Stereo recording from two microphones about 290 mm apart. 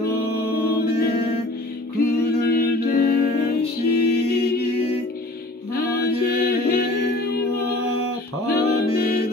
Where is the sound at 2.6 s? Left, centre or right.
Left.